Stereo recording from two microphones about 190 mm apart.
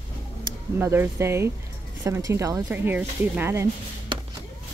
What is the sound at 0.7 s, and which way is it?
Speech, 10° right (ahead or behind).